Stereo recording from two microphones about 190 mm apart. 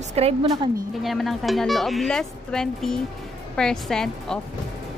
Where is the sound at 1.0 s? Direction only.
Centre (ahead or behind).